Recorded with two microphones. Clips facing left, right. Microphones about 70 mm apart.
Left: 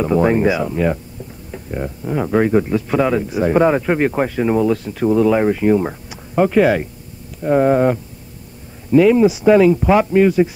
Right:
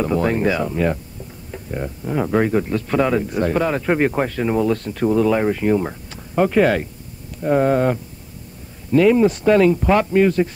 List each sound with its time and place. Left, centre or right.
0.2 s speech: centre
3.4 s speech: centre
3.8 s speech: centre